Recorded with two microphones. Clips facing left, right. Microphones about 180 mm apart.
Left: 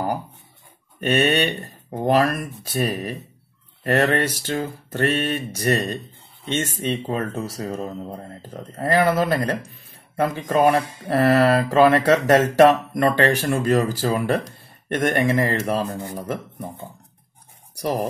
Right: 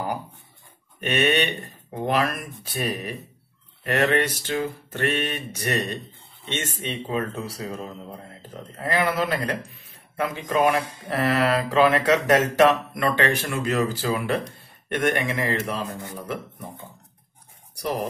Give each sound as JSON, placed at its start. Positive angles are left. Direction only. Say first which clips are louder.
{"t": 1.0, "sound": "mantra", "louder": "left 3 dB", "side_deg": 35}
{"t": 3.8, "sound": "mantra", "louder": "left 2 dB", "side_deg": 40}
{"t": 6.5, "sound": "speech", "louder": "left 6 dB", "side_deg": 40}